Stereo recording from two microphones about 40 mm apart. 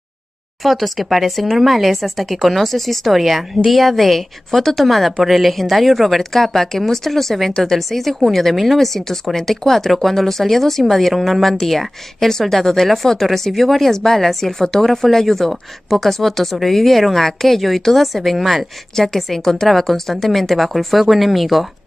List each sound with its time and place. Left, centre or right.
0.7 s a woman's voice: centre